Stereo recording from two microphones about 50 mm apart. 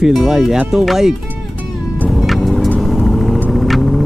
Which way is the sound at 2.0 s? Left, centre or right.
Centre.